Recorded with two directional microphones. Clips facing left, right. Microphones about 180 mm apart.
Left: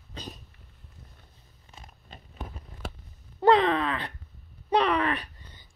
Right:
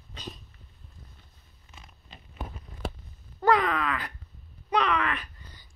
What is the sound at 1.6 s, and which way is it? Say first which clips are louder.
Biting: left 3 dB; 45° left (ahead or behind).